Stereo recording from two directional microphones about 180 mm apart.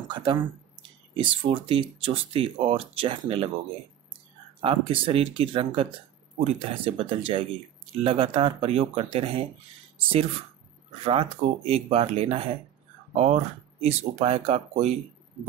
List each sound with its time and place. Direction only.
0.1 s speech: 25° right (ahead or behind)
4.6 s speech: 30° right (ahead or behind)
11.1 s speech: 30° right (ahead or behind)